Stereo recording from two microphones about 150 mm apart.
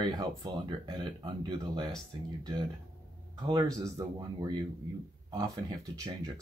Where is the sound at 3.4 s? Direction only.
25° right (ahead or behind).